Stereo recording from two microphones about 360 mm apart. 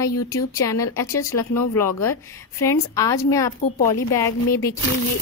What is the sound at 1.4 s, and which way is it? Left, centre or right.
Speech, left.